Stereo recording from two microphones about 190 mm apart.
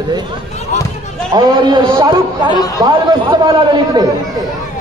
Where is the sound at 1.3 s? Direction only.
20° right (ahead or behind).